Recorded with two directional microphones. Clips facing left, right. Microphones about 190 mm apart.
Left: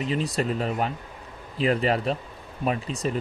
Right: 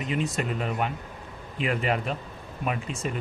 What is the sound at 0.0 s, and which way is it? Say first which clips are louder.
Speech: left 2 dB; 35° left (ahead or behind).